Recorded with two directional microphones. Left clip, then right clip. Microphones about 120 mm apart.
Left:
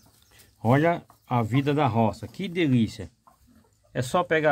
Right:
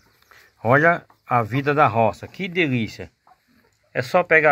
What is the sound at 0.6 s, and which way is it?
Speech, 15° left (ahead or behind).